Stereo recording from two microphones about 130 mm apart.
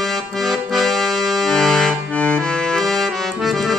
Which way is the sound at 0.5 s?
Centre (ahead or behind).